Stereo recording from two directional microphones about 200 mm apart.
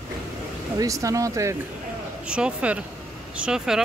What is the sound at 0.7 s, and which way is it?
Speech, 15° right (ahead or behind).